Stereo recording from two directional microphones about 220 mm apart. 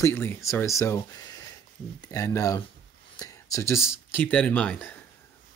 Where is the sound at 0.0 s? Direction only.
10° left (ahead or behind).